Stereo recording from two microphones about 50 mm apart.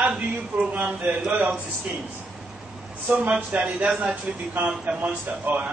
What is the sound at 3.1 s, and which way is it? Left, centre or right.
A man's voice, right.